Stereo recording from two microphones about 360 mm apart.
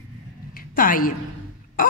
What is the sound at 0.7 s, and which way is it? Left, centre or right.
Speech, left.